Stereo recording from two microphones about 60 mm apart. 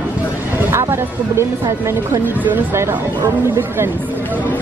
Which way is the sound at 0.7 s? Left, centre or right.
Right.